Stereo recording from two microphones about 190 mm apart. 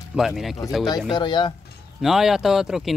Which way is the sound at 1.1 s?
25° left (ahead or behind).